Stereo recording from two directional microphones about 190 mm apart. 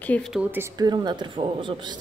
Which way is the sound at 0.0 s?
5° left (ahead or behind).